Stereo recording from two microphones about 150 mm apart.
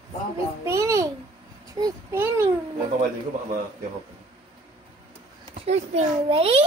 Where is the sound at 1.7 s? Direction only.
20° right (ahead or behind).